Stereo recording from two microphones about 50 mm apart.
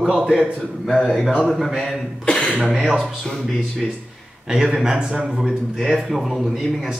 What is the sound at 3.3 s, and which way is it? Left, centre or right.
Speech, centre.